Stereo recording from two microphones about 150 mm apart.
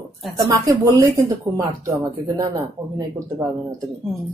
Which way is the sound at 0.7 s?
25° right (ahead or behind).